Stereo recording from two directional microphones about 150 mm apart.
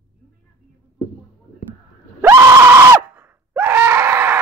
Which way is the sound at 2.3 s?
15° right (ahead or behind).